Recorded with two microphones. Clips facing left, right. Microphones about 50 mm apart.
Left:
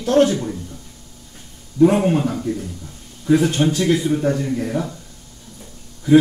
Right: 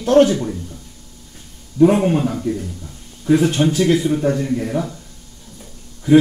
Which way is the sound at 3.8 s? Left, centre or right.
Centre.